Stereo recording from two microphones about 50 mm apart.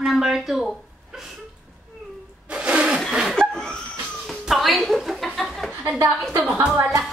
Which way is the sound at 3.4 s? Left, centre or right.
Centre.